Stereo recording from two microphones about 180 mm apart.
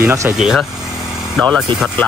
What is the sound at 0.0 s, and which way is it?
Speech, 15° right (ahead or behind).